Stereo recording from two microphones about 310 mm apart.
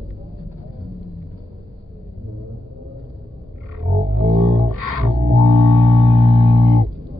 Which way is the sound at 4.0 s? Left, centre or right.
Right.